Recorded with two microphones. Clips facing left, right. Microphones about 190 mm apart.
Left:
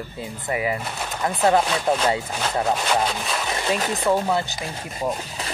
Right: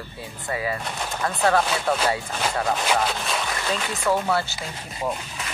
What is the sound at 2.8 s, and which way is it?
Speech, centre (ahead or behind).